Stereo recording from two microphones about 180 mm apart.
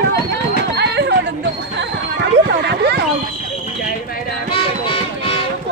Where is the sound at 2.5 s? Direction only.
65° right (ahead or behind).